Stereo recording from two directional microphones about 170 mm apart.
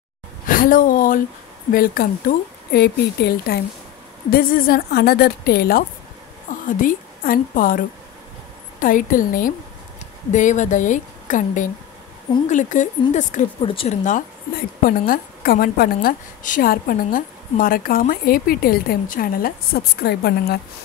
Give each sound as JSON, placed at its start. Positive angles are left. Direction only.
{"t": 0.5, "sound": "a woman's voice", "side_deg": 55}
{"t": 4.3, "sound": "a woman's voice", "side_deg": 60}
{"t": 6.5, "sound": "a sound", "side_deg": 50}
{"t": 6.8, "sound": "a woman's voice", "side_deg": 55}
{"t": 13.6, "sound": "speech", "side_deg": 30}
{"t": 14.8, "sound": "a woman's voice", "side_deg": 55}